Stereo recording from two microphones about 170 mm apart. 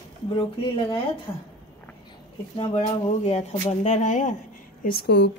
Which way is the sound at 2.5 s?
35° left (ahead or behind).